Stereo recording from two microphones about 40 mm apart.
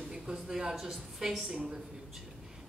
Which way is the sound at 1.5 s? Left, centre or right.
Right.